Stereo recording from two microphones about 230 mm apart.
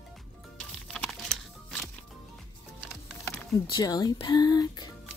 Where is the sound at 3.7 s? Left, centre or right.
Centre.